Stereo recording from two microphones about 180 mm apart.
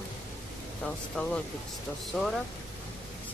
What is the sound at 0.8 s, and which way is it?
Speech, 5° left (ahead or behind).